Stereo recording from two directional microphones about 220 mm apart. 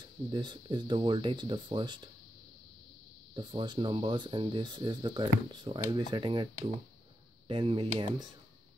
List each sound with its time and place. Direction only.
0.3 s speech: 20° right (ahead or behind)
3.3 s speech: 20° right (ahead or behind)